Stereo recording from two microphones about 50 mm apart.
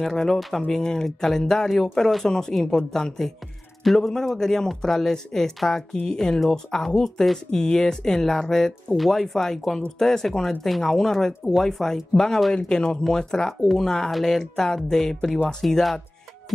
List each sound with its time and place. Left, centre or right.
0.0 s a man's voice: centre